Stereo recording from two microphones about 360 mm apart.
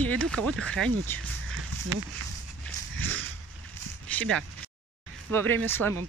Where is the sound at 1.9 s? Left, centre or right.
Right.